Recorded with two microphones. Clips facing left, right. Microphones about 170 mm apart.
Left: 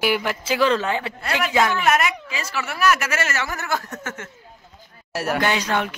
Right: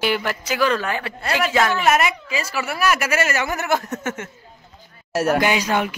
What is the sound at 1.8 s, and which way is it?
A woman's voice, 5° right (ahead or behind).